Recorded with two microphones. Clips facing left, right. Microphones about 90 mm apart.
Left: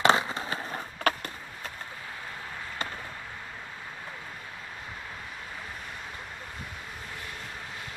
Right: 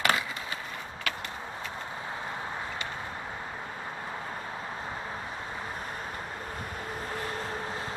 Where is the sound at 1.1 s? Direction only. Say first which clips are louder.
Left 8 dB; 45° left (ahead or behind).